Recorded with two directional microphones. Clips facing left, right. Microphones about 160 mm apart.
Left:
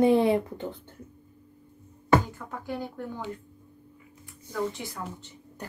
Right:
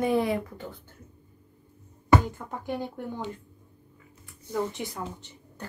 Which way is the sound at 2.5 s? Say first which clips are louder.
Even; 20° right (ahead or behind).